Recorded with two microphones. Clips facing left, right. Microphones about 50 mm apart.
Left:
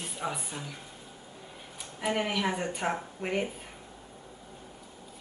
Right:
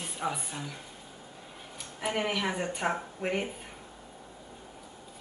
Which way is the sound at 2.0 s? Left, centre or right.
Centre.